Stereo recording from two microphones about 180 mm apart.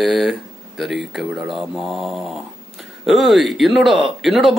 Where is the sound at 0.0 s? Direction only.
Centre (ahead or behind).